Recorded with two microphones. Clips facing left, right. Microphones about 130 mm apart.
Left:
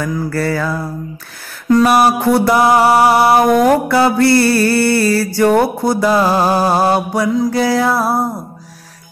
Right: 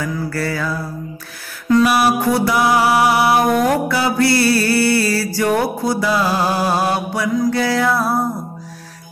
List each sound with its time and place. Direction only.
0.4 s music: 50° left (ahead or behind)
2.1 s music: 60° left (ahead or behind)
6.6 s music: 40° left (ahead or behind)